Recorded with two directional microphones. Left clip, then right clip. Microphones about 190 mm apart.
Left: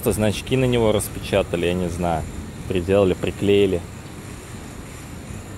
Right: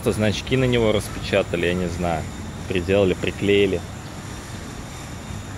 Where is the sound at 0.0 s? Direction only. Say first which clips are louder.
Left 1 dB; 20° left (ahead or behind).